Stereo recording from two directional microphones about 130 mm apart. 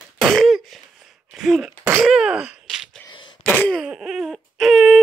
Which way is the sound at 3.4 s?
10° left (ahead or behind).